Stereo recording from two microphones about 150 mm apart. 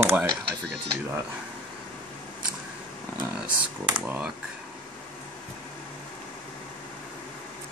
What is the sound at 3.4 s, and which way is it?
Speech, 5° right (ahead or behind).